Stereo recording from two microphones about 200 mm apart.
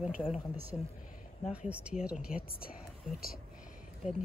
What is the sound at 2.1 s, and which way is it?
Speech, 45° left (ahead or behind).